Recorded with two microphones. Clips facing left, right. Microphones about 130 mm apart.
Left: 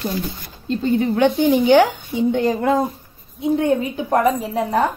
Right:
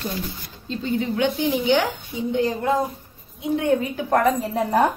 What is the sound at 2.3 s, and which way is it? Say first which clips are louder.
Speech: even; 60° left (ahead or behind).